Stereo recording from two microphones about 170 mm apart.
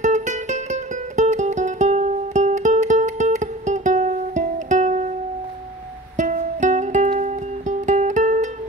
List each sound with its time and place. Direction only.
0.0 s music: 45° right (ahead or behind)
6.1 s music: 45° right (ahead or behind)